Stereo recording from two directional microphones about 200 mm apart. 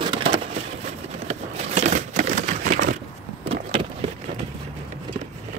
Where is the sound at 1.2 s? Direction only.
35° right (ahead or behind).